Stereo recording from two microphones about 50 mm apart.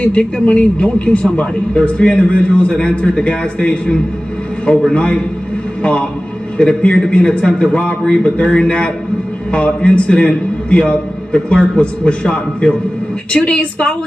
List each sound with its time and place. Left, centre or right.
0.0 s a man's voice: left